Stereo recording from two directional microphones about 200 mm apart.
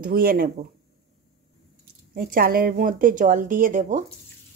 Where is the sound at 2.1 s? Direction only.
45° right (ahead or behind).